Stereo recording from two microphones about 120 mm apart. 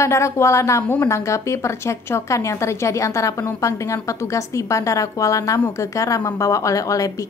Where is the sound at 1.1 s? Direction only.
25° left (ahead or behind).